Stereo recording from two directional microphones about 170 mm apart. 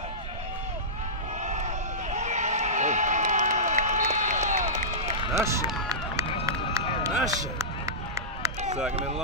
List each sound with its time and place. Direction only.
1.4 s a sound: 45° right (ahead or behind)
5.3 s speech: 15° right (ahead or behind)
5.9 s run: 20° right (ahead or behind)